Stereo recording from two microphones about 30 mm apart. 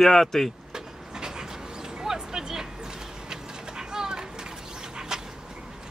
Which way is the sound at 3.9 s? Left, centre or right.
Right.